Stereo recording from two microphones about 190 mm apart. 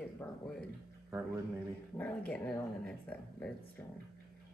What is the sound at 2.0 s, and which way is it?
Speech, 10° left (ahead or behind).